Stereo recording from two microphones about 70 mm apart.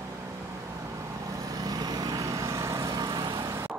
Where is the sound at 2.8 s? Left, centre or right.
Right.